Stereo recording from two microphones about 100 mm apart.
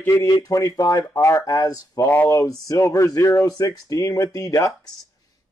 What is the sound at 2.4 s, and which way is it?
Speech, 35° left (ahead or behind).